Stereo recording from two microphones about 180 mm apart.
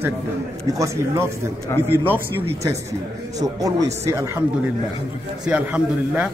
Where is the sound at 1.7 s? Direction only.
15° left (ahead or behind).